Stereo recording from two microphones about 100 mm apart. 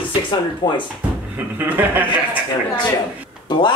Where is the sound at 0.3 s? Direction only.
55° left (ahead or behind).